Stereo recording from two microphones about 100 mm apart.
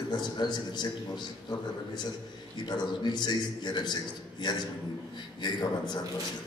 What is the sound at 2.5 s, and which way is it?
A man's voice, 45° left (ahead or behind).